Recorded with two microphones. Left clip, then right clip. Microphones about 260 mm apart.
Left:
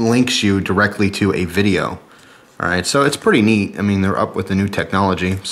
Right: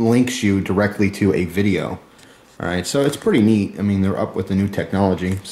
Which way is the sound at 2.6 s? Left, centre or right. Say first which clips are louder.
Left 4 dB; left.